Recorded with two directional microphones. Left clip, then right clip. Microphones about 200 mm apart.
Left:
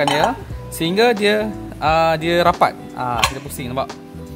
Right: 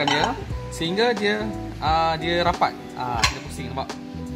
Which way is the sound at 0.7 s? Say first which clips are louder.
Left 6 dB; 50° left (ahead or behind).